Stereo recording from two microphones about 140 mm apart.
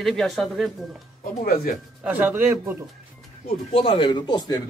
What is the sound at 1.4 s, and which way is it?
Speech, 90° left.